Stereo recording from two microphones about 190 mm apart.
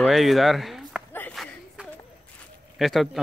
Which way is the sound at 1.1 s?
10° left (ahead or behind).